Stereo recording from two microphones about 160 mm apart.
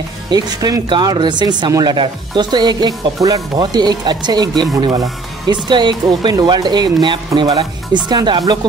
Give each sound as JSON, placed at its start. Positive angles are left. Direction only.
{"t": 0.3, "sound": "speech", "side_deg": -25}